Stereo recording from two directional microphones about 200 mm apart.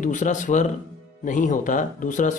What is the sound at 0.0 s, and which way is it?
Speech, 40° left (ahead or behind).